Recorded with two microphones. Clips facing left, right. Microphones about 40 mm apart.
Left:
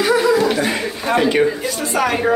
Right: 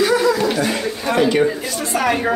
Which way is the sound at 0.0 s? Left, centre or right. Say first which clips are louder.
Left 1 dB; centre.